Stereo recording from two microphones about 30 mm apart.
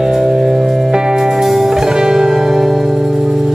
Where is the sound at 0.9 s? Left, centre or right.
Right.